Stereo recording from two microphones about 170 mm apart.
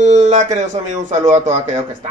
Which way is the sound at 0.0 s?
45° right (ahead or behind).